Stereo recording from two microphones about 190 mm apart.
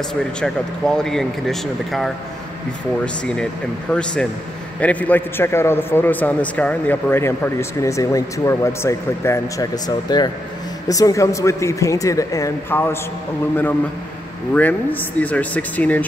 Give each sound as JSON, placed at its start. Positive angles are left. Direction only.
{"t": 0.1, "sound": "speech", "side_deg": 5}
{"t": 3.9, "sound": "a man's voice", "side_deg": 5}
{"t": 14.5, "sound": "a man's voice", "side_deg": 10}